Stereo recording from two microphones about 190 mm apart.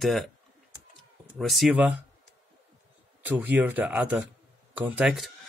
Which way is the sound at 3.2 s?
10° right (ahead or behind).